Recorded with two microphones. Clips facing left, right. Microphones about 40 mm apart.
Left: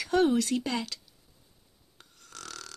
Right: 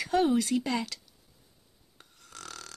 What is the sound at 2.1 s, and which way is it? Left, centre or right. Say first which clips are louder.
Snoring: left 1 dB; centre.